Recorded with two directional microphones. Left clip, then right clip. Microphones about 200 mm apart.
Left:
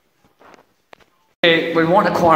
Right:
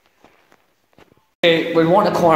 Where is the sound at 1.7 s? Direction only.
15° right (ahead or behind).